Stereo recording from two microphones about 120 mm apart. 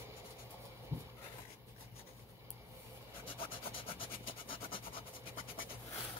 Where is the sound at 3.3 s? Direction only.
45° left (ahead or behind).